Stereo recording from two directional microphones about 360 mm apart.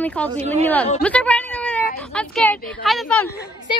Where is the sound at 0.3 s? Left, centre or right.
Centre.